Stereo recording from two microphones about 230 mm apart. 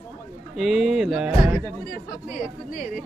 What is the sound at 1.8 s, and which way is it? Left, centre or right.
Speech, left.